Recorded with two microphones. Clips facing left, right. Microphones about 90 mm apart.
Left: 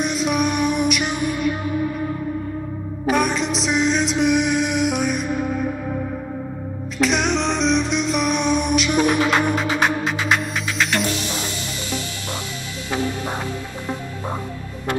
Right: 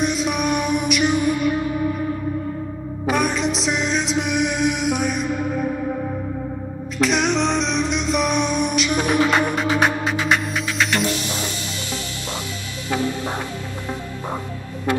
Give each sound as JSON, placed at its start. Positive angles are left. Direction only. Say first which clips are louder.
{"t": 0.0, "sound": "music", "louder": "left 1 dB", "side_deg": 0}
{"t": 3.1, "sound": "music", "louder": "left 1 dB", "side_deg": 0}
{"t": 7.0, "sound": "music", "louder": "right 1 dB", "side_deg": 0}